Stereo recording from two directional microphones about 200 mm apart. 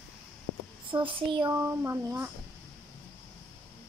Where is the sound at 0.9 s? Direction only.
25° right (ahead or behind).